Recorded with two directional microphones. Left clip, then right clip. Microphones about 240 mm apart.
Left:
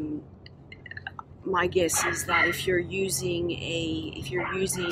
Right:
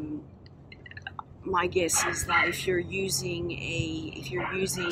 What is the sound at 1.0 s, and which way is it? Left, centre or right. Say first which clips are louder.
Drip: even; centre.